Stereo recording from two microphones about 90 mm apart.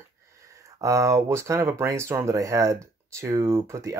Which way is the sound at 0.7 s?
35° right (ahead or behind).